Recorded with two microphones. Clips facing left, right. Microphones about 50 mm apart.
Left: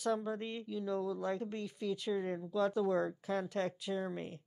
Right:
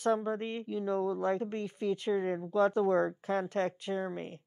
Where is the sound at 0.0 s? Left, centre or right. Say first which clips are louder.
Right 5 dB; right.